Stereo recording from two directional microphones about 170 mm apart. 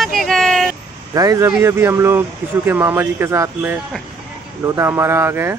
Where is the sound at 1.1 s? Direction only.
20° right (ahead or behind).